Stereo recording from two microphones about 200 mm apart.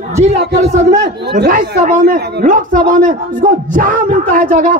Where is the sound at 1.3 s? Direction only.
50° right (ahead or behind).